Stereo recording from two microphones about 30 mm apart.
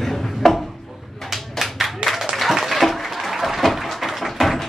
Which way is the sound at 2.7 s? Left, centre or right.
Centre.